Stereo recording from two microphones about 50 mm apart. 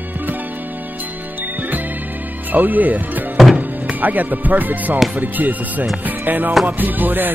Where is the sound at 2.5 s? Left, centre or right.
Right.